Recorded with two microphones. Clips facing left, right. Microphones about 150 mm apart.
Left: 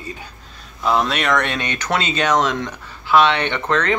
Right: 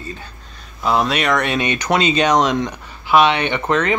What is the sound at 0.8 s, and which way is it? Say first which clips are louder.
Speech: right 1 dB; 5° right (ahead or behind).